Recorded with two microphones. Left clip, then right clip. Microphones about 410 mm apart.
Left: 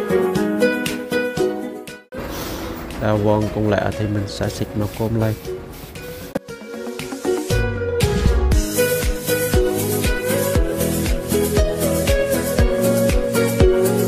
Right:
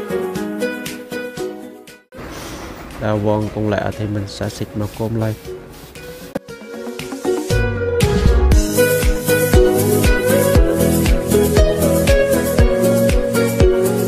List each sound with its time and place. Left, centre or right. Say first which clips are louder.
0.1 s music: left 4 dB; left
3.0 s speech: even; centre
6.9 s music: right 2 dB; centre